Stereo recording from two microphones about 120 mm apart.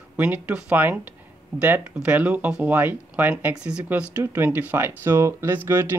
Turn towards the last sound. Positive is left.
turn(degrees=-15)  # may be behind; listen again after turning